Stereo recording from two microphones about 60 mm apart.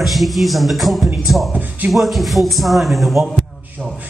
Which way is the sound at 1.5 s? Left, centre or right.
Right.